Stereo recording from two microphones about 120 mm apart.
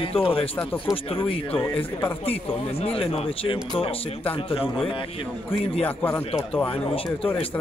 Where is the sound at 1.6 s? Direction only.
40° left (ahead or behind).